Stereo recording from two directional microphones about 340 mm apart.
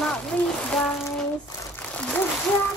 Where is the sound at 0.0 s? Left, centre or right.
Centre.